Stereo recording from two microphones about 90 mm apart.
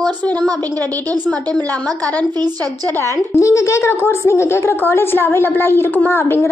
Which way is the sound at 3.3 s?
35° left (ahead or behind).